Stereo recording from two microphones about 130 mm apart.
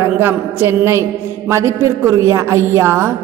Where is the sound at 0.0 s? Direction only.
15° right (ahead or behind).